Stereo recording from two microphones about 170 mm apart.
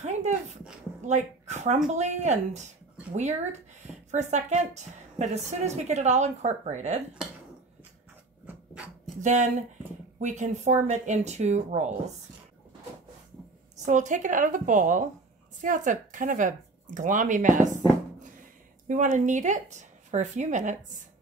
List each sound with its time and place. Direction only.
0.0 s a sound: 40° right (ahead or behind)
1.0 s a woman's voice: 40° right (ahead or behind)
8.5 s a sound: 5° right (ahead or behind)
9.2 s a woman's voice: 45° right (ahead or behind)
13.7 s a woman's voice: 45° right (ahead or behind)
18.9 s a woman's voice: 50° right (ahead or behind)